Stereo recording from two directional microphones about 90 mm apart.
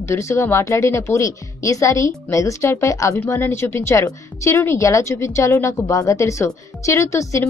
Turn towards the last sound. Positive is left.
turn(degrees=35)  # may be behind; listen again after turning